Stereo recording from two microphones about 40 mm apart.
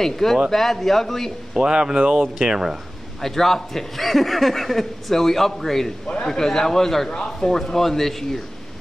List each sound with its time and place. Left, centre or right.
0.0 s a man's voice: centre
1.5 s speech: centre
2.1 s speech: centre
2.4 s speech: centre
3.2 s a man's voice: centre
6.0 s a man's voice: left